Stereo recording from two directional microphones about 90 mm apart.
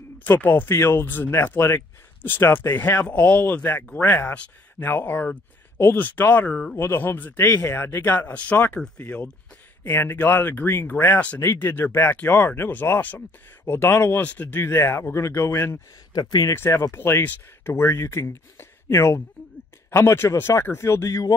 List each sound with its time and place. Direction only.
0.2 s speech: 20° left (ahead or behind)
16.1 s speech: 50° left (ahead or behind)
16.5 s speech: 25° left (ahead or behind)